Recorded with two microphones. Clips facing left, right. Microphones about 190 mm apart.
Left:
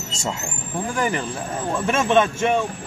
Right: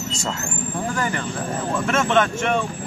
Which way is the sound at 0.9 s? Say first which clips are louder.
Left 1 dB; 15° left (ahead or behind).